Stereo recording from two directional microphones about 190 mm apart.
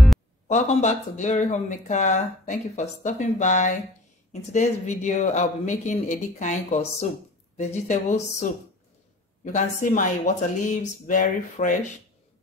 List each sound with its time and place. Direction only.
0.5 s speech: 35° left (ahead or behind)